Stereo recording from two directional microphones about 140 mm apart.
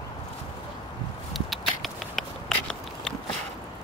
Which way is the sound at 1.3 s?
Centre (ahead or behind).